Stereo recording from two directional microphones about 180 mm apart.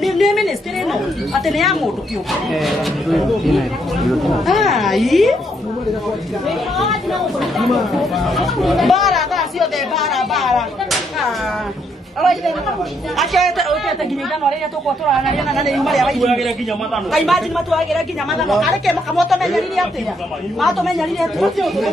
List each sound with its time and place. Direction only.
0.0 s chatter: centre (ahead or behind)
2.5 s speech: centre (ahead or behind)
6.4 s speech: centre (ahead or behind)
15.0 s speech: centre (ahead or behind)